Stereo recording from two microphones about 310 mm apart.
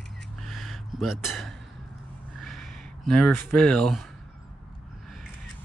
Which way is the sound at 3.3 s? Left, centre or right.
Right.